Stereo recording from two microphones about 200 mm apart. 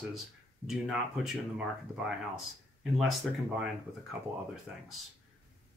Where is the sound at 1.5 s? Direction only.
5° right (ahead or behind).